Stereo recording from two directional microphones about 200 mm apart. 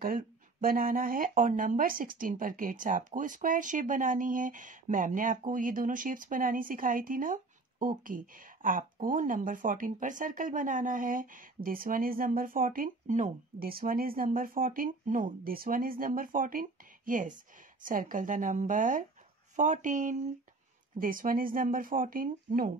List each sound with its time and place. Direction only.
0.0 s speech: 45° right (ahead or behind)